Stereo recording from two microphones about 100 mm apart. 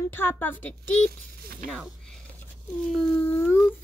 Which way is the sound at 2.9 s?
15° left (ahead or behind).